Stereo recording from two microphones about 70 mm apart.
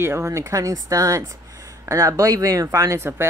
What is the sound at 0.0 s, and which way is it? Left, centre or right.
Speech, right.